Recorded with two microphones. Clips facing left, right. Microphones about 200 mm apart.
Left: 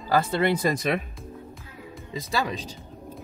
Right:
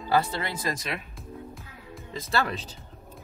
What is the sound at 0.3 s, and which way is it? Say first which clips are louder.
Speech: left 8 dB; 60° left (ahead or behind).